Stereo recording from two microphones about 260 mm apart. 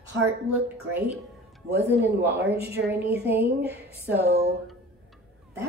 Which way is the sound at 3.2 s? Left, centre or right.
Right.